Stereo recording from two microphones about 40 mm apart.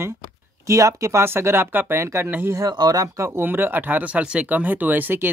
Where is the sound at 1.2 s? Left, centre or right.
Right.